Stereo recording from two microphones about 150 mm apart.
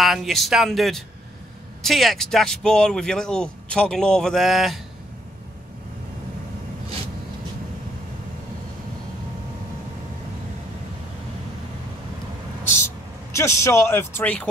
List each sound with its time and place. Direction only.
0.0 s speech: centre (ahead or behind)
12.7 s speech: 15° left (ahead or behind)